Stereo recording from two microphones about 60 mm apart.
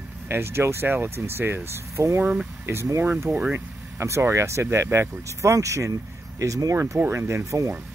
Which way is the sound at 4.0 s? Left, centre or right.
Right.